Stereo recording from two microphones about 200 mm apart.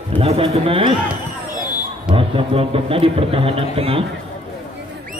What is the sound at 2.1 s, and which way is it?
A man's voice, 30° right (ahead or behind).